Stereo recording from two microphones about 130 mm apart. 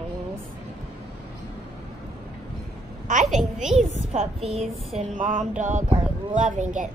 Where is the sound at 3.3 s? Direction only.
Centre (ahead or behind).